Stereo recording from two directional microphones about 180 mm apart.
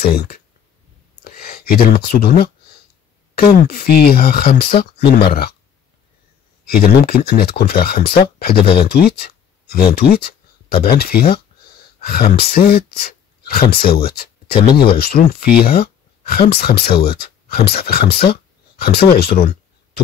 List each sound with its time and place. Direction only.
0.0 s speech: 60° left (ahead or behind)
1.2 s a sound: 55° left (ahead or behind)
2.0 s speech: 60° left (ahead or behind)
6.6 s speech: 55° left (ahead or behind)